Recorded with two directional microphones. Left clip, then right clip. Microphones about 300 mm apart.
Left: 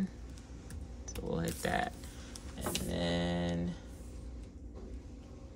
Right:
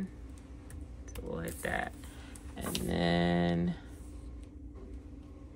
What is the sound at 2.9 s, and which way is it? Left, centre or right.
Speech, centre.